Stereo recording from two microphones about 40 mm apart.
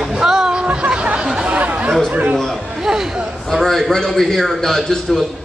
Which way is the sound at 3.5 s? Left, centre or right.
Centre.